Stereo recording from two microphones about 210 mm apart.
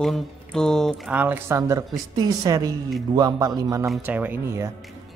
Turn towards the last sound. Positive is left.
turn(degrees=-10)  # may be behind; listen again after turning